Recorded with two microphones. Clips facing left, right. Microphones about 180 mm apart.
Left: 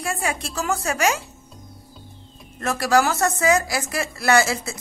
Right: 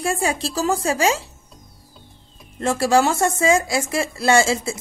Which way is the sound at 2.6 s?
25° right (ahead or behind).